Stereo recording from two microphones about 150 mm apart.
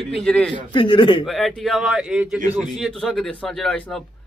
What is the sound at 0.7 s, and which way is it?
Speech, 35° left (ahead or behind).